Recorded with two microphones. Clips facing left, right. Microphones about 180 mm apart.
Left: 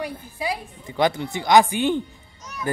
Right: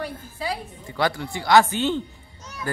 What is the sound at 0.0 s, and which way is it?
A woman's voice, 15° left (ahead or behind).